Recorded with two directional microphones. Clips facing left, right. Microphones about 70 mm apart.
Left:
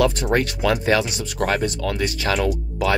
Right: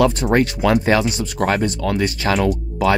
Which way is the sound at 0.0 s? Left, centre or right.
Right.